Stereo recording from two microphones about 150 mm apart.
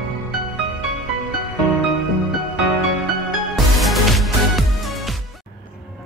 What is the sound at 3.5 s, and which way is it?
Music, centre (ahead or behind).